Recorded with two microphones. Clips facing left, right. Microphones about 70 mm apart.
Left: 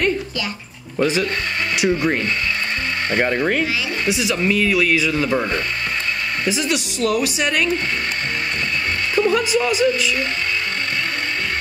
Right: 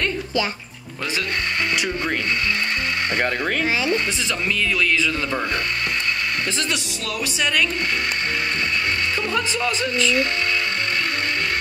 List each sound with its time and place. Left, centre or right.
0.9 s speech: centre
6.4 s speech: centre
9.3 s speech: centre